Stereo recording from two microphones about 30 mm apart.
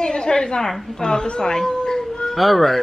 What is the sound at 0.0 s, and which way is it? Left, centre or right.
A woman's voice, left.